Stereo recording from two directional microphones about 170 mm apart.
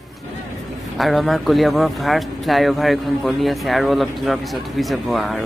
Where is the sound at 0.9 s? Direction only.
Centre (ahead or behind).